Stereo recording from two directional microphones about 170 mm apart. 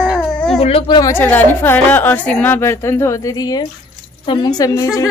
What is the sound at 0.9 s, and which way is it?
A woman's voice, 15° left (ahead or behind).